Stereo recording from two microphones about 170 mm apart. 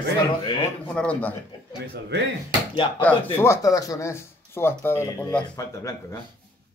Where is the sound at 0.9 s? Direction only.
5° left (ahead or behind).